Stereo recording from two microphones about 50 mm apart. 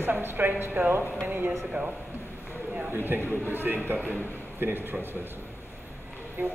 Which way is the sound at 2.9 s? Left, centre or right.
Right.